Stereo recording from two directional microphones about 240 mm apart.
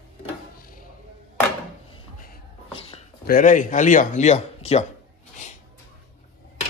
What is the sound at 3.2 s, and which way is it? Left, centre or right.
Speech, left.